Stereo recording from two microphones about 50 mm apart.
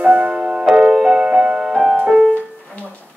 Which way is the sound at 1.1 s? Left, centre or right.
Centre.